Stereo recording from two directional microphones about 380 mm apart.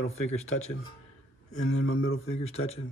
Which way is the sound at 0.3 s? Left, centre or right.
Centre.